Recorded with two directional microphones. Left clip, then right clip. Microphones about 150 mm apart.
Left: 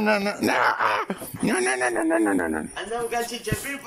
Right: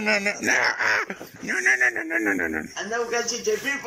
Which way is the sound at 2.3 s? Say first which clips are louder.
Left 1 dB; centre (ahead or behind).